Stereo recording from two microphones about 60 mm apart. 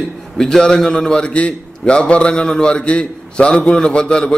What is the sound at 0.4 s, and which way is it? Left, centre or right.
A man's voice, centre.